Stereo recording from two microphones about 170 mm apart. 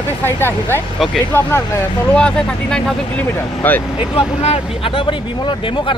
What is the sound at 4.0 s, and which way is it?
Speech, 35° left (ahead or behind).